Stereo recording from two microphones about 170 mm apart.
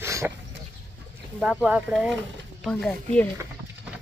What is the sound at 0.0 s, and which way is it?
Goat, 15° right (ahead or behind).